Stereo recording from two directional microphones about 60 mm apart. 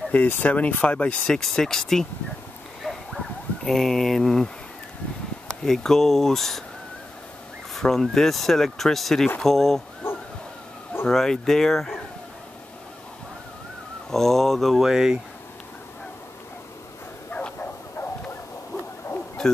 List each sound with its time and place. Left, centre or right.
0.1 s speech: left
1.3 s speech: centre
2.8 s a sound: centre
5.6 s speech: centre
7.7 s speech: centre
11.1 s speech: centre
14.1 s speech: centre
19.4 s speech: centre